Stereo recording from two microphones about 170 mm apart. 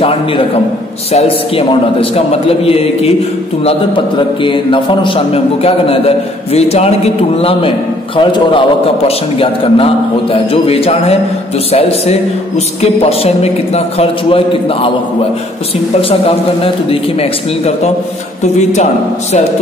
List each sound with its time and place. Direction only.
1.1 s a man's voice: 35° left (ahead or behind)
15.9 s a man's voice: 35° left (ahead or behind)